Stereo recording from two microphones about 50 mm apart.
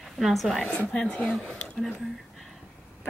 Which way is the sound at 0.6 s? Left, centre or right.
Left.